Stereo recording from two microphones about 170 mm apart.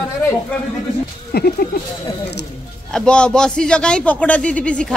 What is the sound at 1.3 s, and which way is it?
Speech, 60° left (ahead or behind).